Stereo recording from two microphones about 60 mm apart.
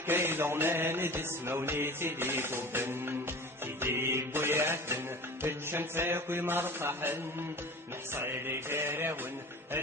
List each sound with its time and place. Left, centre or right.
0.0 s music: right